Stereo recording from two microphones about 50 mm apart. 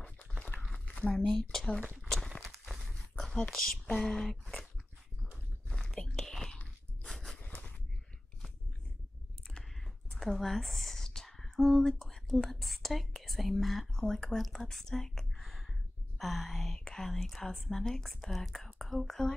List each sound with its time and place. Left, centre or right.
0.7 s zipper: left
1.1 s speech: centre
2.4 s walk: centre
2.8 s a sound: centre
3.4 s speech: centre
5.9 s whispering: centre
6.5 s dog: left
7.3 s a sound: left
9.5 s computer keyboard: centre
11.6 s speech: centre